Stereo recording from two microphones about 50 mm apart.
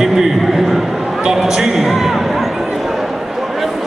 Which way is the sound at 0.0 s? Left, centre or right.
Centre.